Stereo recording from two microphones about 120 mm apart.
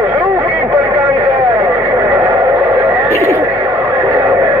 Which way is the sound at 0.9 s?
15° right (ahead or behind).